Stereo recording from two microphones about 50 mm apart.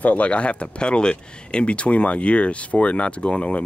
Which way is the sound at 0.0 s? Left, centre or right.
Left.